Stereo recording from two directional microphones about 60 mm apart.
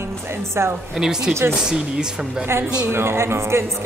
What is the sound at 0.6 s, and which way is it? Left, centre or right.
Speech, right.